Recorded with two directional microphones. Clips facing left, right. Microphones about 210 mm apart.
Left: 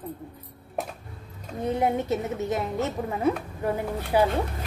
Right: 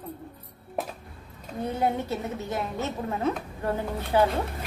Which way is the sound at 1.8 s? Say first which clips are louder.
Left 2 dB; 20° left (ahead or behind).